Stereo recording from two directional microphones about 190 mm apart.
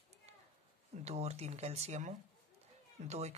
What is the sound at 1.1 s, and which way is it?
Speech, 35° right (ahead or behind).